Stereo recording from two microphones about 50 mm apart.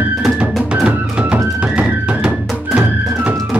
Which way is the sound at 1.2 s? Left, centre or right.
Right.